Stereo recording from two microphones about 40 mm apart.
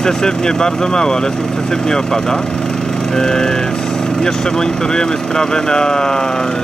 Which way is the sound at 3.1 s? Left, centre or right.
Centre.